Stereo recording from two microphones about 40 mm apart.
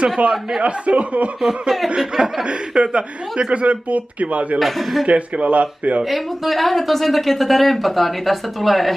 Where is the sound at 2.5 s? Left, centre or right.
Right.